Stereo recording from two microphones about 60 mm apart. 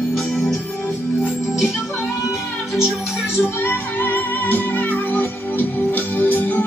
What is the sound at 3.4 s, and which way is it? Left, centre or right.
Music, left.